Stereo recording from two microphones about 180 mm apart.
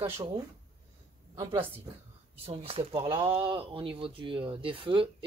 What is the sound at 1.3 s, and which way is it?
A woman's voice, 25° right (ahead or behind).